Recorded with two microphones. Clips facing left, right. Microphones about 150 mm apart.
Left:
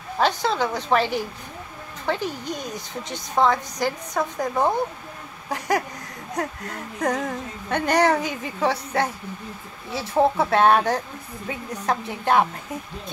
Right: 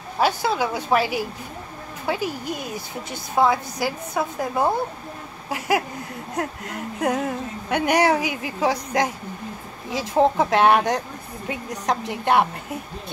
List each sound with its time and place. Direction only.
0.2 s a woman's voice: 10° right (ahead or behind)